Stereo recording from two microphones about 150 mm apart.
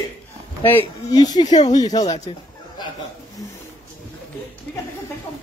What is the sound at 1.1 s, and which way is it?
Speech, 25° left (ahead or behind).